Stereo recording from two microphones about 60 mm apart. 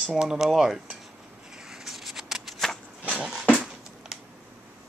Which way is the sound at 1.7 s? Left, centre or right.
Centre.